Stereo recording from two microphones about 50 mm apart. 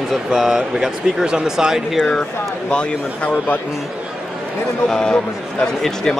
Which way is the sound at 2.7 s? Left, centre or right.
Left.